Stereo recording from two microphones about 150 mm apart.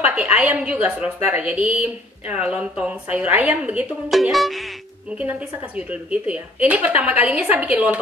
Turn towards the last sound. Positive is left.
turn(degrees=-10)  # may be behind; listen again after turning